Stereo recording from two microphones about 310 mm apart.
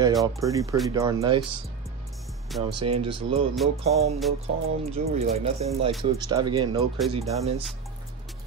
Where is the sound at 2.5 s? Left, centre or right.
Centre.